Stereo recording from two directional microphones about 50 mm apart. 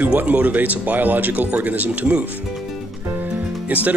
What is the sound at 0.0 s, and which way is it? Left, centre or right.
Speech, right.